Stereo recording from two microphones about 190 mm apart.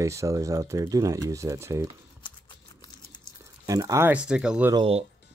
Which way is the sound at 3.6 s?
20° right (ahead or behind).